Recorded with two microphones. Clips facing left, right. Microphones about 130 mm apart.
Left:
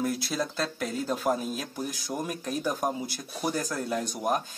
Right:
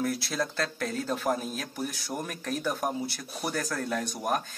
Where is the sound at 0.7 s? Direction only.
15° left (ahead or behind).